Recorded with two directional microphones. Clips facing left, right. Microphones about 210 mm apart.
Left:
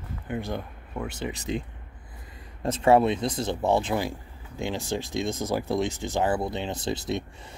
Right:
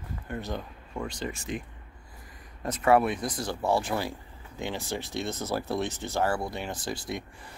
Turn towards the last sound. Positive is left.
turn(degrees=25)  # may be behind; listen again after turning